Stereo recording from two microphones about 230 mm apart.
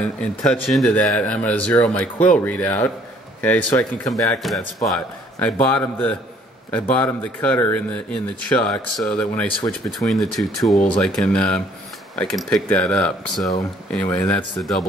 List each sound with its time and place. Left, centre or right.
0.0 s a man's voice: centre